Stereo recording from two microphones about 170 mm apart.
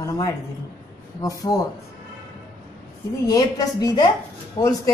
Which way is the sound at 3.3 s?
20° left (ahead or behind).